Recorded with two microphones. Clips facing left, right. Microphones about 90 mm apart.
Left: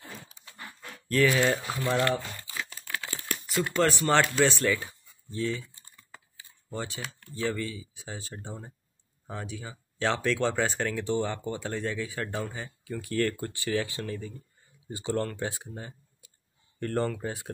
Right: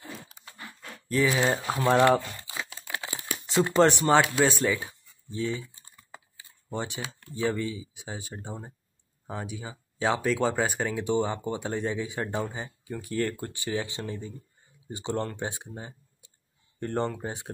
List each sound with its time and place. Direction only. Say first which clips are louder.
1.1 s speech: left 1 dB; 15° right (ahead or behind)
2.5 s crumpling: even; 20° right (ahead or behind)
3.4 s speech: right 5 dB; 25° right (ahead or behind)
4.1 s speech: right 2 dB; 10° right (ahead or behind)
5.3 s typing: even; 15° right (ahead or behind)
6.7 s speech: right 2 dB; 20° right (ahead or behind)